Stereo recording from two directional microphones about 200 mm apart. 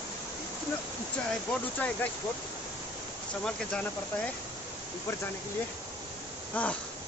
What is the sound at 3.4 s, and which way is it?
Speech, 5° left (ahead or behind).